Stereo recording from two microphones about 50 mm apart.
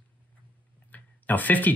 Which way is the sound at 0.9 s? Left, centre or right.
Left.